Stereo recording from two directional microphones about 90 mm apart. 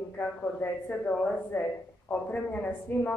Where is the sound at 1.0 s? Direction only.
10° left (ahead or behind).